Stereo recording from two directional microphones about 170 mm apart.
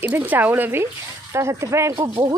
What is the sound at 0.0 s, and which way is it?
Speech, 10° right (ahead or behind).